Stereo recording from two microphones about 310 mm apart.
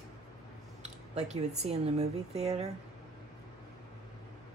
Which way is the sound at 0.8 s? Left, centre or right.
Right.